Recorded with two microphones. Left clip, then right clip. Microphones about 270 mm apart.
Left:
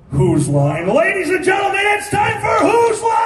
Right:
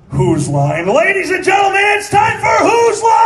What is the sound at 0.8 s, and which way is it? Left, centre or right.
A man's voice, centre.